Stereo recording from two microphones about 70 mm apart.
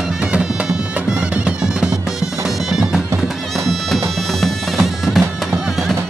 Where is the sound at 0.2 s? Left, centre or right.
Centre.